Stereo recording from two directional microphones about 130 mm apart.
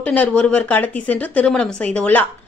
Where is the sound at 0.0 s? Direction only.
10° left (ahead or behind).